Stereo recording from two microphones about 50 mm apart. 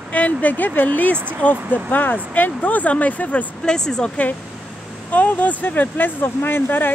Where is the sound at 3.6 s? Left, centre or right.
Centre.